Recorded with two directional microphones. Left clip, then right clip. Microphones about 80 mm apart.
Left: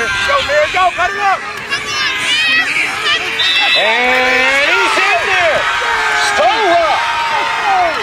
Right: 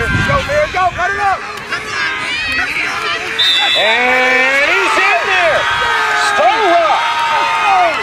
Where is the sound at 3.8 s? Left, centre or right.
Centre.